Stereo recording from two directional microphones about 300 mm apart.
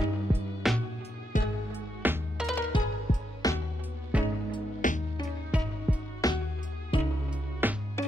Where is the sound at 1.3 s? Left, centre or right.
Left.